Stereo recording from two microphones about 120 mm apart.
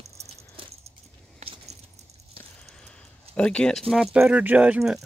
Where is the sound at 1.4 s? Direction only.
65° right (ahead or behind).